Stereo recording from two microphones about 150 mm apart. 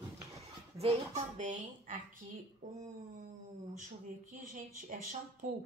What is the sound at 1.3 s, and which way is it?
Speech, 55° right (ahead or behind).